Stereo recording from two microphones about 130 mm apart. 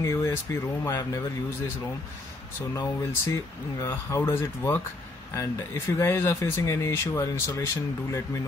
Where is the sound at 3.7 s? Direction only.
20° left (ahead or behind).